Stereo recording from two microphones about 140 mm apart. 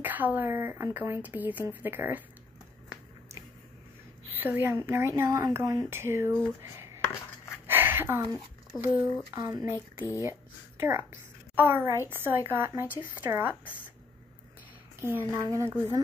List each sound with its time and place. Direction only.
0.0 s speech: 10° right (ahead or behind)
4.3 s speech: 15° right (ahead or behind)
7.6 s a sound: 15° right (ahead or behind)
8.8 s speech: 15° right (ahead or behind)
10.8 s speech: 20° right (ahead or behind)
15.0 s speech: 15° right (ahead or behind)